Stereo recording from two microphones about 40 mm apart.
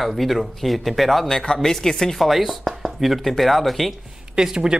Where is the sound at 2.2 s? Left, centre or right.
Centre.